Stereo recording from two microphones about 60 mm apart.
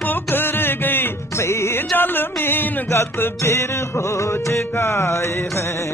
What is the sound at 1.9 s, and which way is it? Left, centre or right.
Music, left.